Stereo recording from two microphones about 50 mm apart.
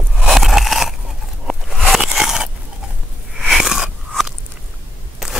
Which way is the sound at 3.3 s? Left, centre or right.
Centre.